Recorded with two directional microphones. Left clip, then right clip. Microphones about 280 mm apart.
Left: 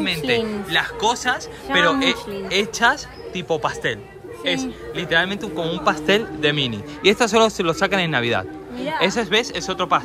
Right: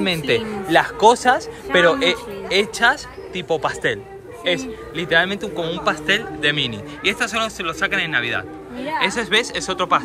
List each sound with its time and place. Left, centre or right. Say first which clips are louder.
0.7 s a man's voice: right 8 dB; centre